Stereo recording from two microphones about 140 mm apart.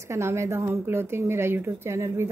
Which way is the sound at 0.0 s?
20° right (ahead or behind).